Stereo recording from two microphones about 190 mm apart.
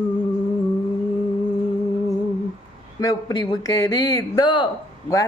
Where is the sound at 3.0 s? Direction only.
20° left (ahead or behind).